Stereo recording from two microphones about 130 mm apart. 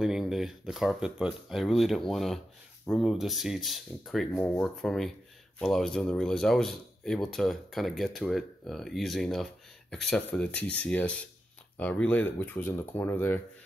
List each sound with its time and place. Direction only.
0.0 s speech: 5° right (ahead or behind); by 13.4 s 20° left (ahead or behind)